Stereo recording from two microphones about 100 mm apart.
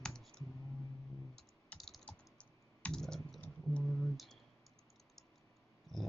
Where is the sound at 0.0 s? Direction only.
5° left (ahead or behind).